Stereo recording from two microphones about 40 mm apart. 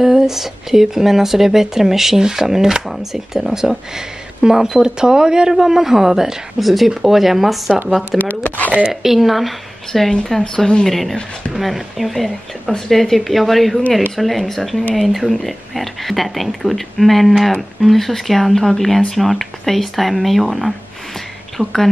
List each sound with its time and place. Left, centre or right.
0.0 s speech: centre
6.6 s speech: centre
8.5 s speech: left
9.0 s speech: centre
10.4 s speech: left
11.5 s speech: centre
12.7 s speech: centre
21.6 s a woman's voice: right